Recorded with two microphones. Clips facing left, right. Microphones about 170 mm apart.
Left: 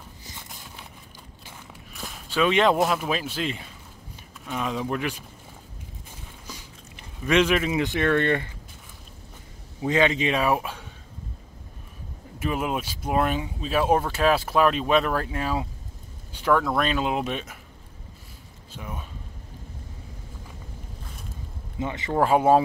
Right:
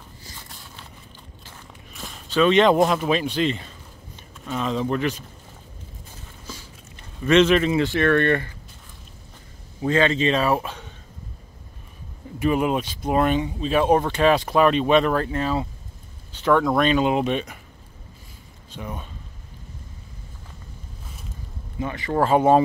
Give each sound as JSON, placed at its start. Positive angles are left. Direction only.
{"t": 0.2, "sound": "walk", "side_deg": 20}
{"t": 2.0, "sound": "speech", "side_deg": 5}
{"t": 6.4, "sound": "speech", "side_deg": 15}
{"t": 9.8, "sound": "speech", "side_deg": 15}
{"t": 12.4, "sound": "speech", "side_deg": 0}
{"t": 18.7, "sound": "speech", "side_deg": 5}
{"t": 21.7, "sound": "speech", "side_deg": 20}
{"t": 22.1, "sound": "speech", "side_deg": 5}